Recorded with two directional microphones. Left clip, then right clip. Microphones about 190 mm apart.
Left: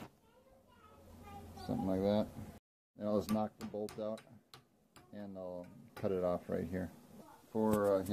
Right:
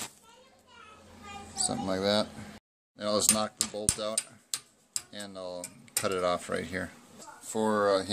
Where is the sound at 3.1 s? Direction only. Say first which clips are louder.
Right 8 dB; 30° right (ahead or behind).